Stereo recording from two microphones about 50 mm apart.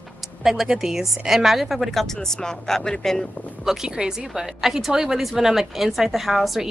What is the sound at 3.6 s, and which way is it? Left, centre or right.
A woman's voice, centre.